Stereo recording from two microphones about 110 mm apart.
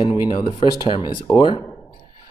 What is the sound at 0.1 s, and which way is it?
Speech, 40° left (ahead or behind).